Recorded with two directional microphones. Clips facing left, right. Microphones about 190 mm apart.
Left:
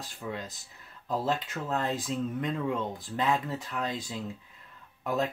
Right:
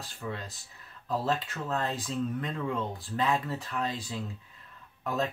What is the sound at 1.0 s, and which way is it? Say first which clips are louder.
Speech: even; 20° left (ahead or behind).